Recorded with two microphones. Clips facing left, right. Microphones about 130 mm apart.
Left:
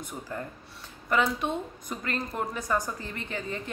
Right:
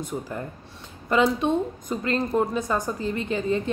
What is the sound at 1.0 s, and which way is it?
A woman's voice, 20° right (ahead or behind).